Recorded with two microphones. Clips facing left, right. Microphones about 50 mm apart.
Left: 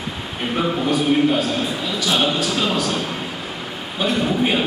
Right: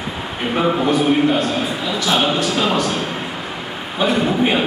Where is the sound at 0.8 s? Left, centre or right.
Centre.